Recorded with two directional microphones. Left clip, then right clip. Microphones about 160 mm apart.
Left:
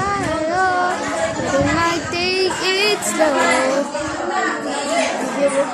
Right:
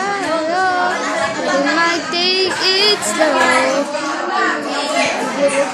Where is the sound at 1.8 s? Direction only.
10° left (ahead or behind).